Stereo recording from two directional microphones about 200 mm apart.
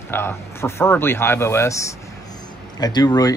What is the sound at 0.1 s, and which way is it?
A man's voice, 10° left (ahead or behind).